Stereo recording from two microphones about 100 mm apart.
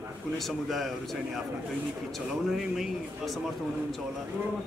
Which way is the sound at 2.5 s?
5° right (ahead or behind).